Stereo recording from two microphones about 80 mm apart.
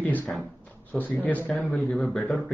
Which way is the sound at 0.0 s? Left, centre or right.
Left.